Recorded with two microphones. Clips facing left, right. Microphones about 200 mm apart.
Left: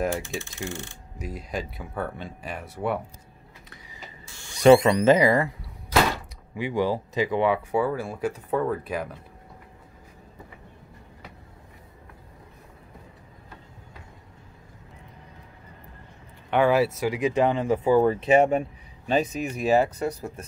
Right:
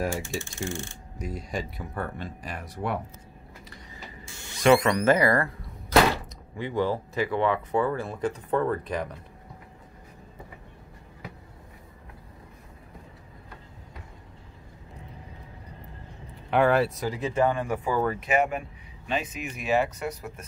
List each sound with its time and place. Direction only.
0.6 s speech: 5° left (ahead or behind)
4.6 s speech: 25° left (ahead or behind)
6.5 s speech: 10° left (ahead or behind)
16.4 s speech: centre (ahead or behind); by 20.4 s 30° left (ahead or behind)